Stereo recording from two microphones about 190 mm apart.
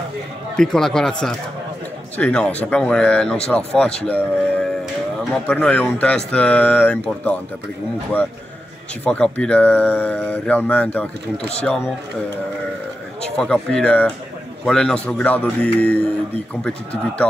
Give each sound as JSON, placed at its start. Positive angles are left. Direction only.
{"t": 0.6, "sound": "speech", "side_deg": 0}
{"t": 9.0, "sound": "speech", "side_deg": 5}
{"t": 13.2, "sound": "speech", "side_deg": 5}